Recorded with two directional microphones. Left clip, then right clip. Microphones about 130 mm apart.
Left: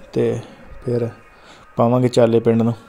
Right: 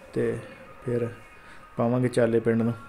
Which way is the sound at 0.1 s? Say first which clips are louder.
Left 8 dB; 50° left (ahead or behind).